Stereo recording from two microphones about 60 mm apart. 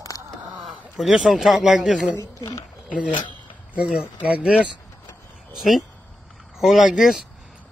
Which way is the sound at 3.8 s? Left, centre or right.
Centre.